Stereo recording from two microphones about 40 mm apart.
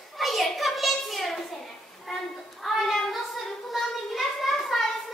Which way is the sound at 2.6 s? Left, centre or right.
Centre.